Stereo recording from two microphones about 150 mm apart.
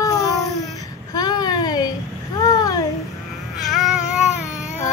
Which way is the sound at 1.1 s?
25° left (ahead or behind).